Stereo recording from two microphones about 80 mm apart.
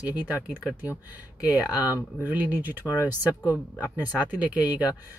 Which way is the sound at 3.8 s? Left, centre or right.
Right.